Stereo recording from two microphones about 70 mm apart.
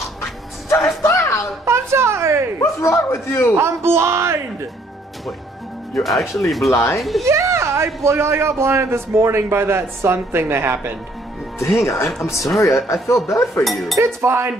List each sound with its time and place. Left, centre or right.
1.0 s a sound: left
1.7 s a sound: right
2.6 s chuckle: left
3.5 s a man's voice: right
5.9 s speech: centre
6.7 s dishes: left
7.0 s speech: centre
7.2 s a man's voice: right
11.6 s speech: left
12.2 s dishes: left
13.9 s a man's voice: right